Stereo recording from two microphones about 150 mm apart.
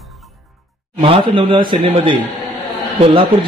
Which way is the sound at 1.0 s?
35° right (ahead or behind).